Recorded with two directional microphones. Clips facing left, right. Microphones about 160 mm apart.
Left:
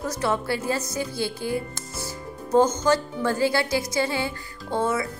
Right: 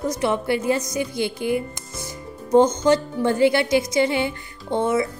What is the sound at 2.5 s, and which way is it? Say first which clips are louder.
Music: right 4 dB; 20° right (ahead or behind).